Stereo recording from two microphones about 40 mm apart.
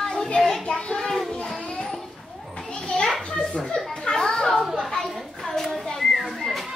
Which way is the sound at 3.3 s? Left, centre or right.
Left.